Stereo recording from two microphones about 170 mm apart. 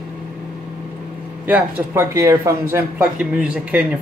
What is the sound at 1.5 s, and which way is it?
Speech, 10° right (ahead or behind).